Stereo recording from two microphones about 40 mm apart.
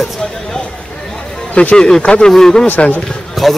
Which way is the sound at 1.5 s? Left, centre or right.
Left.